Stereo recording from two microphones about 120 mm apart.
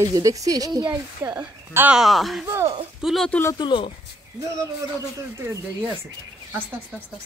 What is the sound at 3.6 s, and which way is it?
Speech, 45° left (ahead or behind).